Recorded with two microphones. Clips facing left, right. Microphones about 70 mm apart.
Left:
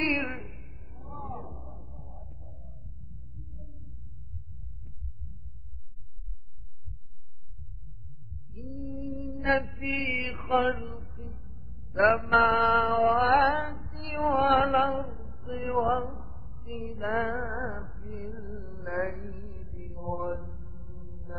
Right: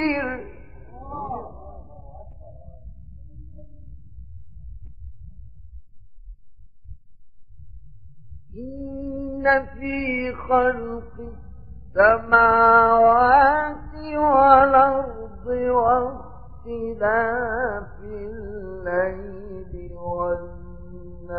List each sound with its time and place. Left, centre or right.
0.0 s a sound: right
2.0 s a sound: centre
8.6 s mantra: right
14.2 s music: right
15.3 s music: right
15.6 s music: right
17.1 s music: right
18.0 s music: right
20.7 s music: centre